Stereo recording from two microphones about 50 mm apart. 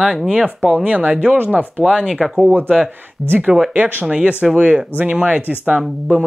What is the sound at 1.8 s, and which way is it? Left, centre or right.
Speech, centre.